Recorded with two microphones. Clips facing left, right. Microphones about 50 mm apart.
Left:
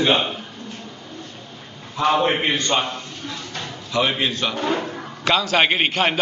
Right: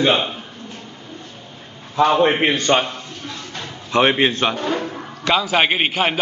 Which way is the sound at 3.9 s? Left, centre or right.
Right.